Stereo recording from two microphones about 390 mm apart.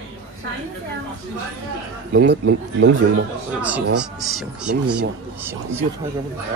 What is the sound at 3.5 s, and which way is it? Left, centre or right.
A man's voice, centre.